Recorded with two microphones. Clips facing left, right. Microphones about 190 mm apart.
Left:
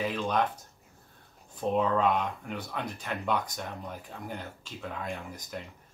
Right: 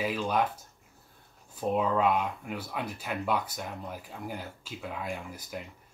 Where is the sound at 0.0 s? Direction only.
5° right (ahead or behind).